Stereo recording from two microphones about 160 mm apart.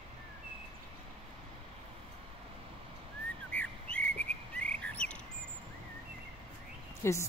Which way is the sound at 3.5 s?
10° left (ahead or behind).